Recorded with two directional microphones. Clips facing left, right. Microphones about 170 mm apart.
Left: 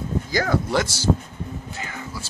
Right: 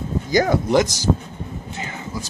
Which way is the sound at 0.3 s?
20° right (ahead or behind).